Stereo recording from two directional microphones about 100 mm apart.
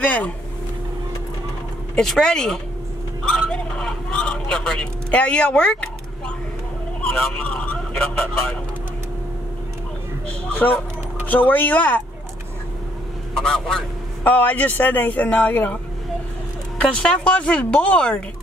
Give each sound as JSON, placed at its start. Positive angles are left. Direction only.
{"t": 0.0, "sound": "a sound", "side_deg": 15}
{"t": 2.0, "sound": "speech", "side_deg": 5}
{"t": 10.5, "sound": "speech", "side_deg": 15}
{"t": 13.3, "sound": "speech", "side_deg": 5}
{"t": 16.9, "sound": "speech", "side_deg": 10}